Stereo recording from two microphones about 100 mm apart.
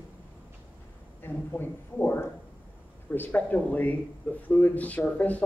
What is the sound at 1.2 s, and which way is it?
A man's voice, 20° left (ahead or behind).